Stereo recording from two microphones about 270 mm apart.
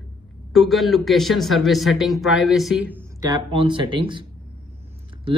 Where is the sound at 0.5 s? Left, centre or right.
Centre.